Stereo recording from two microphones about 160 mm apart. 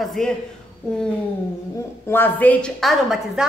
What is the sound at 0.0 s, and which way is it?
A woman's voice, 5° left (ahead or behind).